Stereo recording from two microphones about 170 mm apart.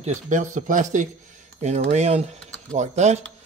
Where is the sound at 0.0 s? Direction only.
45° right (ahead or behind).